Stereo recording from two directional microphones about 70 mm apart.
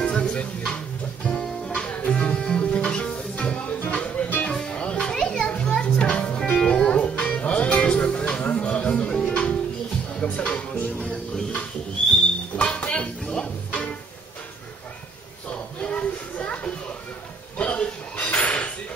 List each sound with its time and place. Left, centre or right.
0.0 s music: centre
4.5 s children playing: centre
9.2 s music: centre
12.5 s music: centre
15.5 s children playing: centre
17.6 s a sound: centre